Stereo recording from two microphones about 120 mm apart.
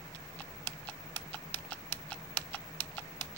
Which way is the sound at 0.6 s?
15° left (ahead or behind).